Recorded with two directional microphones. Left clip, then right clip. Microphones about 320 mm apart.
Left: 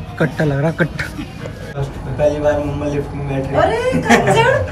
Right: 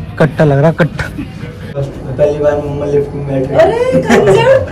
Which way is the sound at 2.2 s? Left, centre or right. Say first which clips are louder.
Right 4 dB; centre.